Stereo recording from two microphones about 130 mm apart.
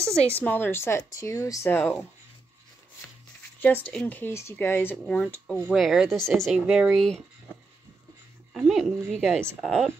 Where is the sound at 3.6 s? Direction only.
10° left (ahead or behind).